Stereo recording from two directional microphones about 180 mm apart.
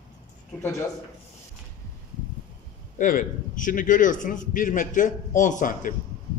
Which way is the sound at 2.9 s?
50° left (ahead or behind).